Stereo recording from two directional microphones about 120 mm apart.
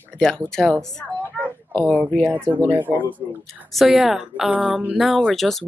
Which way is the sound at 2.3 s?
15° right (ahead or behind).